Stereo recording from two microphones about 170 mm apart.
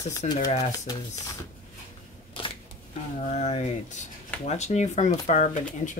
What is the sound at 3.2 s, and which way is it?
Speech, 40° left (ahead or behind).